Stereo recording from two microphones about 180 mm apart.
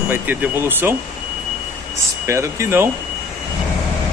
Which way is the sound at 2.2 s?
15° right (ahead or behind).